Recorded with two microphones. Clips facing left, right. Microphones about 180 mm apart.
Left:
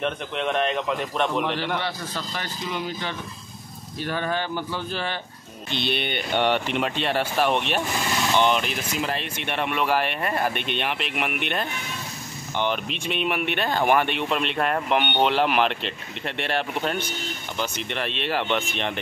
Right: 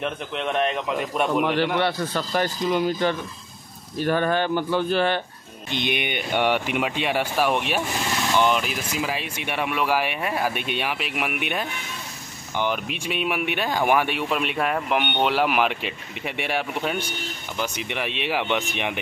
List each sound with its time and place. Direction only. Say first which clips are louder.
0.0 s a man's voice: left 1 dB; centre (ahead or behind)
1.8 s speech: right 7 dB; 60° right (ahead or behind)
5.7 s speech: right 1 dB; 15° right (ahead or behind)